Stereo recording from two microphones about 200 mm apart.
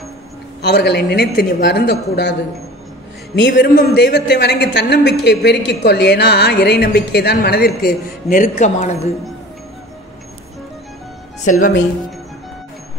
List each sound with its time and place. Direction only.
0.6 s speech: 55° left (ahead or behind)
3.3 s speech: 60° left (ahead or behind); by 9.1 s 35° left (ahead or behind)